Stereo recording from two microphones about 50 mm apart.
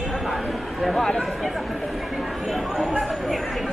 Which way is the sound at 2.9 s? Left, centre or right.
Centre.